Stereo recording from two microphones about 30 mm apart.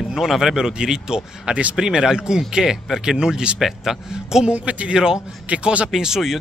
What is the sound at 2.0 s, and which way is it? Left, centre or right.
A man's voice, centre.